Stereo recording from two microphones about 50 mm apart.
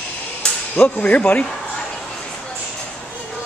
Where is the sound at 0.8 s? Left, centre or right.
Left.